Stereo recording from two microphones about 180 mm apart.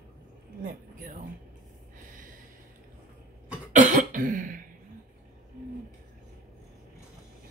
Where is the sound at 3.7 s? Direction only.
45° right (ahead or behind).